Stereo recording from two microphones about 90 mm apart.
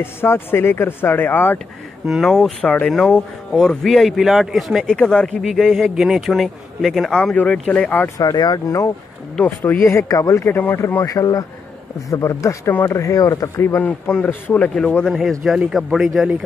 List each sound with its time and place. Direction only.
0.0 s speech: 25° left (ahead or behind)
2.0 s speech: centre (ahead or behind)
4.8 s speech: 10° left (ahead or behind)
7.2 s speech: 15° left (ahead or behind)
8.2 s speech: 45° left (ahead or behind)
9.4 s speech: 20° left (ahead or behind)
9.9 s speech: 40° left (ahead or behind)
10.4 s speech: 25° left (ahead or behind)
11.1 s speech: 40° left (ahead or behind)
13.7 s speech: 15° left (ahead or behind)
15.4 s speech: 5° right (ahead or behind)